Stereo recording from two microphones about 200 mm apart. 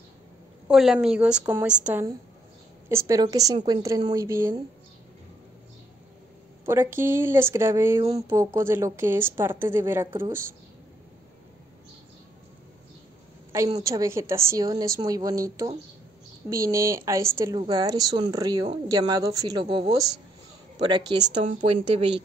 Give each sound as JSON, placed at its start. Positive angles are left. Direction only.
{"t": 0.7, "sound": "a woman's voice", "side_deg": 0}
{"t": 6.6, "sound": "a woman's voice", "side_deg": -10}
{"t": 13.5, "sound": "a woman's voice", "side_deg": -15}